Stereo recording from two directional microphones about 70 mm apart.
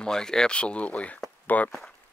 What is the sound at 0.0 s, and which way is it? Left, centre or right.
Speech, centre.